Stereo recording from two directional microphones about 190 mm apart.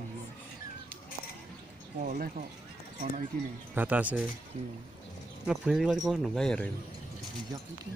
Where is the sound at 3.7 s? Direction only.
10° right (ahead or behind).